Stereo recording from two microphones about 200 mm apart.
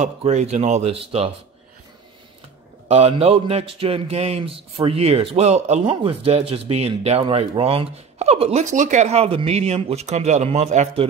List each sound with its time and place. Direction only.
0.0 s speech: 35° right (ahead or behind)
2.9 s speech: 30° right (ahead or behind)